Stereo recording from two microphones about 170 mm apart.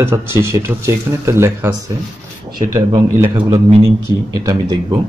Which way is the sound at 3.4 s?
35° right (ahead or behind).